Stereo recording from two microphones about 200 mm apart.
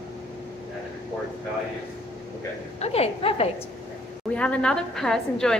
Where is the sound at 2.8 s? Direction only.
30° left (ahead or behind).